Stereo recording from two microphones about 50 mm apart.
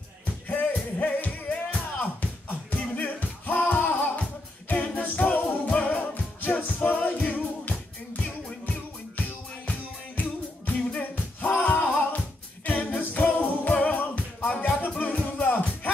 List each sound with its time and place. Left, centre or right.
0.5 s music: left
4.2 s music: left